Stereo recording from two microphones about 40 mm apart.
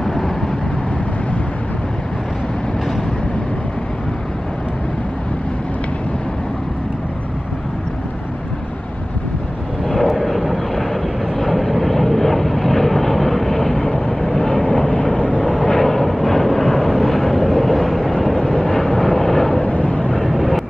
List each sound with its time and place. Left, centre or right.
0.0 s vehicle: centre
9.8 s vehicle: centre
14.9 s vehicle: left
15.4 s vehicle: centre
19.6 s a sound: left
20.2 s vehicle: centre